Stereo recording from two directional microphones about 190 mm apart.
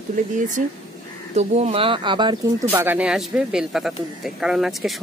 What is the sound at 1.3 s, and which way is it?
Speech, 35° right (ahead or behind).